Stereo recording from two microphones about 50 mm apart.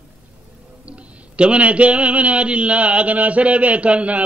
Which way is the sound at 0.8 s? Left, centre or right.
Right.